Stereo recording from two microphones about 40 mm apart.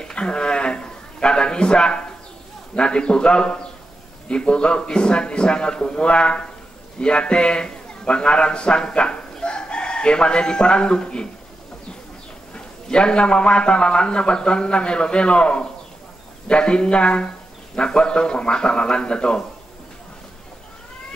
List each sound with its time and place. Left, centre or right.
0.0 s a sound: left
2.7 s a man's voice: left
9.4 s chicken: left
12.5 s a man's voice: left